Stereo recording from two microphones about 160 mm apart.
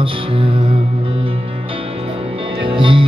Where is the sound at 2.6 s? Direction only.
35° right (ahead or behind).